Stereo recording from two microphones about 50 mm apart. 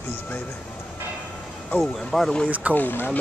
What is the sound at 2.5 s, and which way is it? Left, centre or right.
Speech, right.